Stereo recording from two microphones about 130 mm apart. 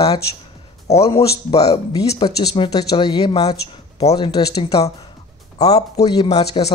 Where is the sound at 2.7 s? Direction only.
30° left (ahead or behind).